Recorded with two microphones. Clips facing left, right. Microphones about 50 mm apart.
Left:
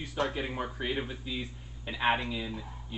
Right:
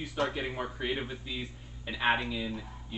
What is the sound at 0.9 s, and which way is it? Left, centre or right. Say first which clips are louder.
Speech: left 1 dB; centre.